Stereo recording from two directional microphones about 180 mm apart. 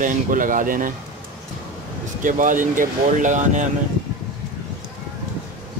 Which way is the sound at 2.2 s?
45° right (ahead or behind).